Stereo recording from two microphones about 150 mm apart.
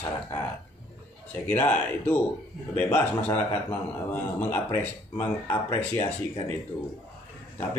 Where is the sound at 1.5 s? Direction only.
10° left (ahead or behind).